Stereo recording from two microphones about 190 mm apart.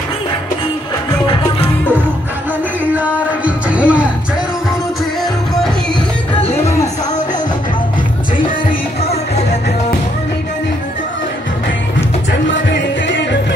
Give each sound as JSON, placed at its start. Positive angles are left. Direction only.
{"t": 1.2, "sound": "music", "side_deg": 25}
{"t": 2.8, "sound": "a sound", "side_deg": -10}
{"t": 12.3, "sound": "music", "side_deg": 75}